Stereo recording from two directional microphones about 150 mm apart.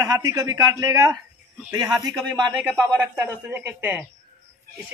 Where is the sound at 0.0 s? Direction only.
25° right (ahead or behind).